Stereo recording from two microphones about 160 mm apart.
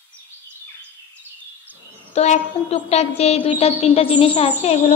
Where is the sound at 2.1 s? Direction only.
45° left (ahead or behind).